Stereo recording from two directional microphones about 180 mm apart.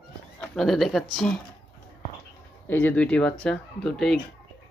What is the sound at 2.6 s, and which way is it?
Speech, 10° left (ahead or behind).